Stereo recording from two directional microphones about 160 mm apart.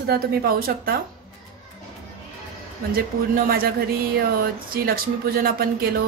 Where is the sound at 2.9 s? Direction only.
65° right (ahead or behind).